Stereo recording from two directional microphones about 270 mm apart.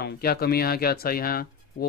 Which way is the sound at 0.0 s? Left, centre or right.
Left.